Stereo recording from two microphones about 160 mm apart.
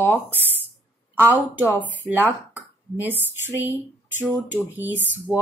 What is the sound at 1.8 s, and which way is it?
Speech, 10° right (ahead or behind).